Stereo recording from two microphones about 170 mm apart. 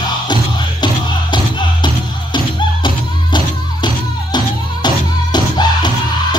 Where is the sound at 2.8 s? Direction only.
25° left (ahead or behind).